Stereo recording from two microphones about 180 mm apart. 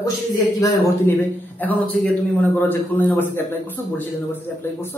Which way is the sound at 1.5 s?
10° left (ahead or behind).